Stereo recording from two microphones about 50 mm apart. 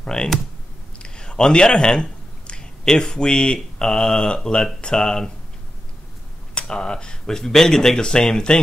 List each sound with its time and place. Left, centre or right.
0.0 s speech: centre
0.9 s a sound: centre
3.8 s speech: centre
6.5 s speech: centre